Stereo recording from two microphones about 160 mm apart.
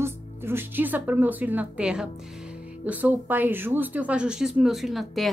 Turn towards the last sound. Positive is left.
turn(degrees=0)  # may be behind; listen again after turning